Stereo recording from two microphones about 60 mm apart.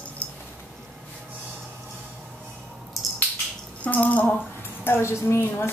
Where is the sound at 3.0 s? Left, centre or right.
Centre.